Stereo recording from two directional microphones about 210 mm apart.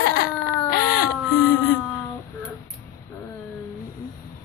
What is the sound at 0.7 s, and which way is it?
Baby cry, 50° left (ahead or behind).